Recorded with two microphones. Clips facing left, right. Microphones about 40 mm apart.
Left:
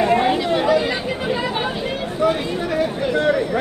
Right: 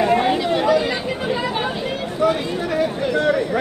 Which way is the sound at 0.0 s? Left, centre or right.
Centre.